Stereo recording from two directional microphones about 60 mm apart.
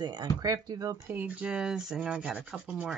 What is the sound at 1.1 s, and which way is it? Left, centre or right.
Speech, right.